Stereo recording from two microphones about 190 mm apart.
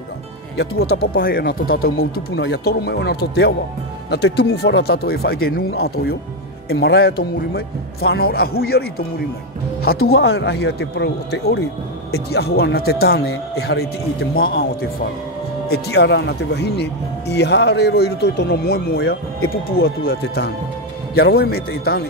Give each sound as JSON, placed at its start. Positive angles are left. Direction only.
{"t": 0.6, "sound": "speech", "side_deg": 55}
{"t": 6.7, "sound": "speech", "side_deg": 60}
{"t": 15.7, "sound": "speech", "side_deg": 60}